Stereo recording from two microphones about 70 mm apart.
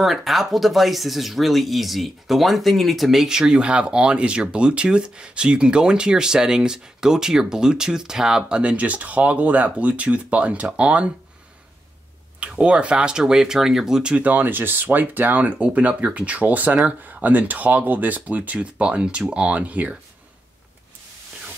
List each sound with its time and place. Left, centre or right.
0.0 s speech: centre
12.4 s speech: centre